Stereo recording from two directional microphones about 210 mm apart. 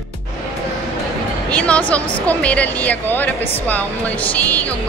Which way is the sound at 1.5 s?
5° left (ahead or behind).